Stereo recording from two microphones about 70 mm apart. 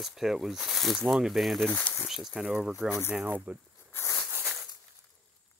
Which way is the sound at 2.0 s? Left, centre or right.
Centre.